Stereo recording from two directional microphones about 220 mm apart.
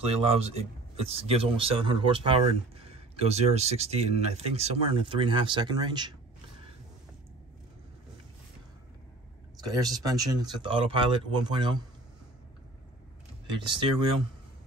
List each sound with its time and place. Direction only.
0.0 s speech: 25° right (ahead or behind)
9.7 s speech: 15° right (ahead or behind)
13.5 s speech: 20° right (ahead or behind)